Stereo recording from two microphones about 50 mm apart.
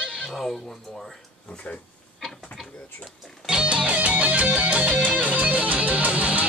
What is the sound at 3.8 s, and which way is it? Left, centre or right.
Music, right.